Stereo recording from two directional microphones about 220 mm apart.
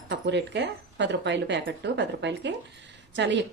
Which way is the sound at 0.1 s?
55° right (ahead or behind).